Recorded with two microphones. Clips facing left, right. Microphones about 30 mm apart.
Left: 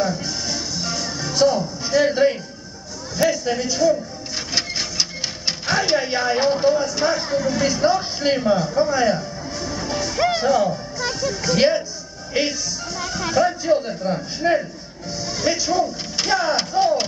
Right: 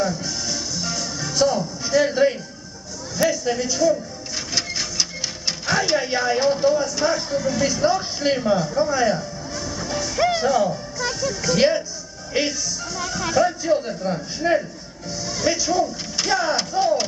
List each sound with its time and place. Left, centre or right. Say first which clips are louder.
0.0 s music: left 1 dB; centre
3.2 s a man's voice: left 1 dB; centre
4.6 s printer: left 1 dB; centre
5.7 s speech: left 1 dB; centre